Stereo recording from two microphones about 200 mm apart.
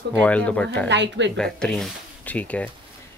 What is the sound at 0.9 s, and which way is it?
Speech, 60° right (ahead or behind).